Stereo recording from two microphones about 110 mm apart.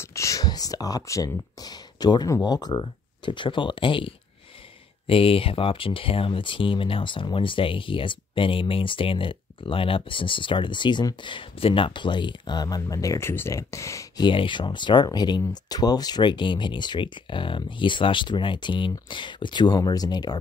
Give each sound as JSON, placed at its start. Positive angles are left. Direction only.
{"t": 0.0, "sound": "a sound", "side_deg": 25}
{"t": 2.3, "sound": "speech", "side_deg": 35}
{"t": 14.2, "sound": "speech", "side_deg": 50}